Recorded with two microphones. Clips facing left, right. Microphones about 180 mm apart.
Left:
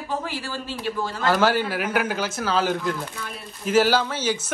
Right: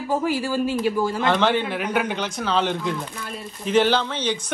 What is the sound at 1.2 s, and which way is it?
Speech, 5° left (ahead or behind).